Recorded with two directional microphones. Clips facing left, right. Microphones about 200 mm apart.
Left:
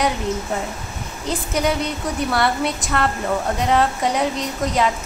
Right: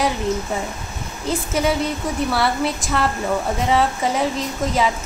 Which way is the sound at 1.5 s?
5° right (ahead or behind).